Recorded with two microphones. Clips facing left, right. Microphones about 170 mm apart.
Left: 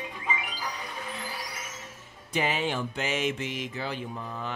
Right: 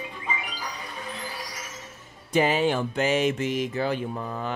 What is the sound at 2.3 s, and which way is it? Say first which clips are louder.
Music: right 6 dB; 40° right (ahead or behind).